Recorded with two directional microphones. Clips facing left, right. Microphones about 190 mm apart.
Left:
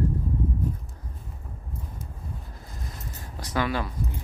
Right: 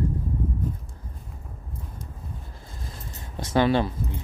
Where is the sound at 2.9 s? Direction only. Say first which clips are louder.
Even; 25° right (ahead or behind).